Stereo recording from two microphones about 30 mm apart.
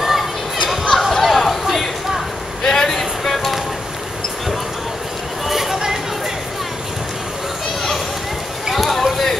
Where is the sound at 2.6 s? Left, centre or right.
Centre.